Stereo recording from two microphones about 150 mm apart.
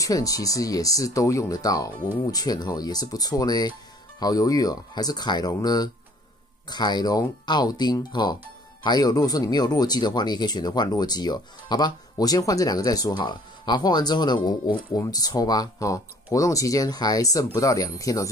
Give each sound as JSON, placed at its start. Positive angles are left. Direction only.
{"t": 0.0, "sound": "speech", "side_deg": 25}